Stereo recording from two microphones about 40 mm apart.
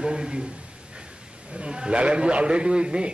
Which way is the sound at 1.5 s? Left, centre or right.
Right.